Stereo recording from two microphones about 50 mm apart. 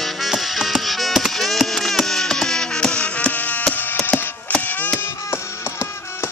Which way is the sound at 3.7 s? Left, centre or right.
Left.